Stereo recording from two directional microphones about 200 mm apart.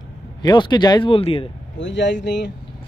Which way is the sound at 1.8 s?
65° left (ahead or behind).